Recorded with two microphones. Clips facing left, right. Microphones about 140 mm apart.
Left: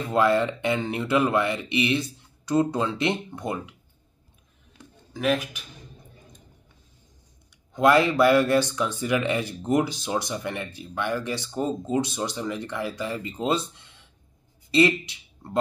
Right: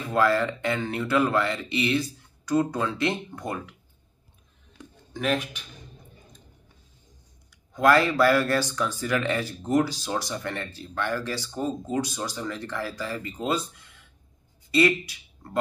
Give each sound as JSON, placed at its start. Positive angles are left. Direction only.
{"t": 0.1, "sound": "speech", "side_deg": 20}
{"t": 5.1, "sound": "speech", "side_deg": 5}
{"t": 7.7, "sound": "speech", "side_deg": 20}